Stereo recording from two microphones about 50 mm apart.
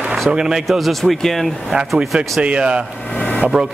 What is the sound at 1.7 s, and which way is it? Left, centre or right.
A man's voice, centre.